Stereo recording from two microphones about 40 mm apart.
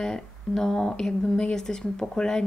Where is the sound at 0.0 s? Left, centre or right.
Centre.